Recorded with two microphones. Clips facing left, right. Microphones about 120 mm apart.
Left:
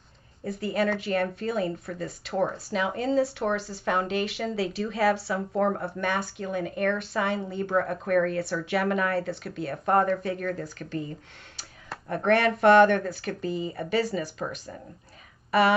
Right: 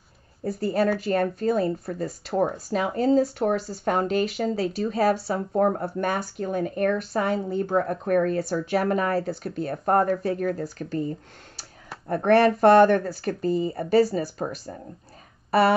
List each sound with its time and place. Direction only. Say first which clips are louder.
0.4 s speech: right 4 dB; 40° right (ahead or behind)